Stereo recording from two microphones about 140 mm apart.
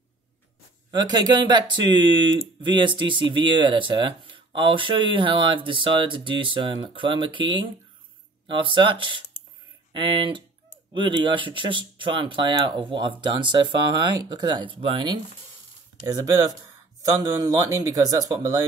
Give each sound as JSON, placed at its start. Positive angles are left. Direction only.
{"t": 0.9, "sound": "speech", "side_deg": -30}
{"t": 16.1, "sound": "speech", "side_deg": -25}